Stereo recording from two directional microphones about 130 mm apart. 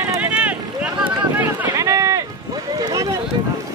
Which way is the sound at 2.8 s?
30° right (ahead or behind).